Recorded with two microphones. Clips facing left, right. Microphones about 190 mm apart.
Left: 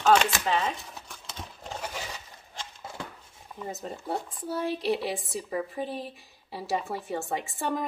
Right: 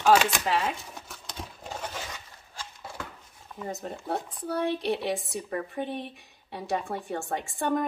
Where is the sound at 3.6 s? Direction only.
Centre (ahead or behind).